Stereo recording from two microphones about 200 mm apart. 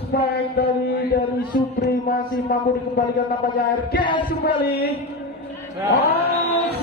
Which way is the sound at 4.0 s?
25° left (ahead or behind).